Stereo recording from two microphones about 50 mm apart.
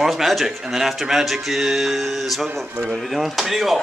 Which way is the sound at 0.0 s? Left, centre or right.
Centre.